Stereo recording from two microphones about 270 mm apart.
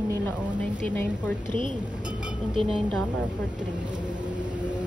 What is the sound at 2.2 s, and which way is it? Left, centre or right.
Speech, centre.